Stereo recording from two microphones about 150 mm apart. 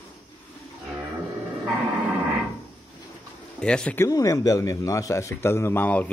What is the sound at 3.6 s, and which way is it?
Speech, 5° left (ahead or behind).